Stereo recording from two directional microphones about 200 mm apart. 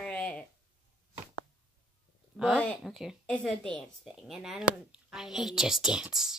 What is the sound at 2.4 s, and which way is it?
A woman's voice, centre (ahead or behind).